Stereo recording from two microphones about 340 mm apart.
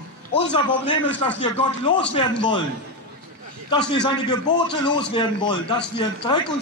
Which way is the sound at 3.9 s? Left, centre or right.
Centre.